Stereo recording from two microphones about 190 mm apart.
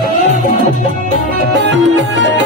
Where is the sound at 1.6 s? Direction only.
70° right (ahead or behind).